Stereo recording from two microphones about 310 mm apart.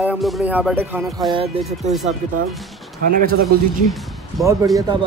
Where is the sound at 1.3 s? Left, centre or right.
Right.